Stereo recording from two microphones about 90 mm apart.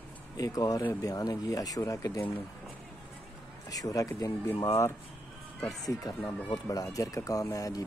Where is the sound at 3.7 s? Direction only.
40° left (ahead or behind).